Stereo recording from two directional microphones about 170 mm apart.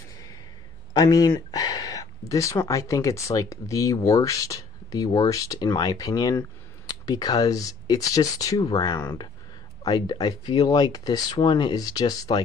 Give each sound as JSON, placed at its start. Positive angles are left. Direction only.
{"t": 0.9, "sound": "speech", "side_deg": 20}